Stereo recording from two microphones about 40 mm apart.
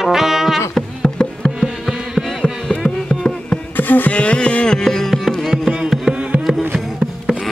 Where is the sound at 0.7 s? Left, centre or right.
Centre.